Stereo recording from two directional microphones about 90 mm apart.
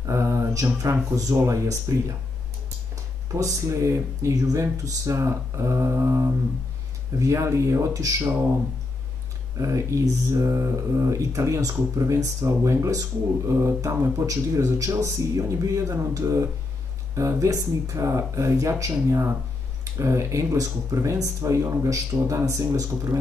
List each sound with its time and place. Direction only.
0.0 s speech: 35° right (ahead or behind)
3.3 s speech: 35° right (ahead or behind)
9.6 s speech: 35° right (ahead or behind)